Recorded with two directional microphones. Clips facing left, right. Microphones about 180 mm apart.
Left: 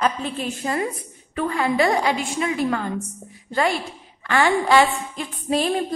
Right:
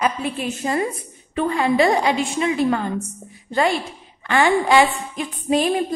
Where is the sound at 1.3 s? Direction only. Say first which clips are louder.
Right 3 dB; 25° right (ahead or behind).